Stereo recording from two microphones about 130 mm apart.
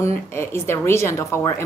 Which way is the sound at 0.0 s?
20° left (ahead or behind).